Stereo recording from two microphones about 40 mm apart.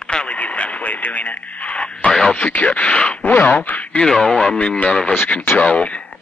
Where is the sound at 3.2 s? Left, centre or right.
Left.